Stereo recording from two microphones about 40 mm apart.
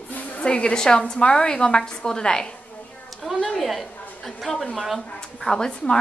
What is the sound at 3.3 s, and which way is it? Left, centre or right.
Speech, centre.